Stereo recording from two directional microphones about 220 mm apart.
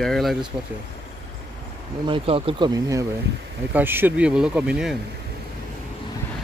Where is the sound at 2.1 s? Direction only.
25° right (ahead or behind); by 4.9 s 5° right (ahead or behind).